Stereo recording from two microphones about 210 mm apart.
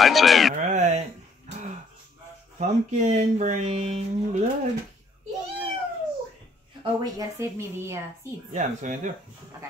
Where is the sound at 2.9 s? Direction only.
35° right (ahead or behind).